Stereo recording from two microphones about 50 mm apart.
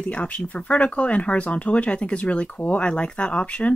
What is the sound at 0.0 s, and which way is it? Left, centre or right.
Speech, left.